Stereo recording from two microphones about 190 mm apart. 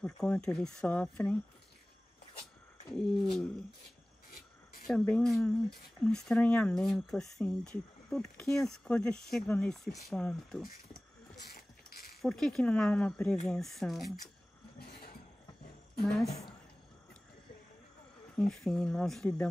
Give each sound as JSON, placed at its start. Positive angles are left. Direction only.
{"t": 0.0, "sound": "speech", "side_deg": 5}
{"t": 2.9, "sound": "speech", "side_deg": 0}
{"t": 4.8, "sound": "speech", "side_deg": 5}
{"t": 10.9, "sound": "keys jangling", "side_deg": 50}
{"t": 12.2, "sound": "speech", "side_deg": 0}
{"t": 18.3, "sound": "speech", "side_deg": 5}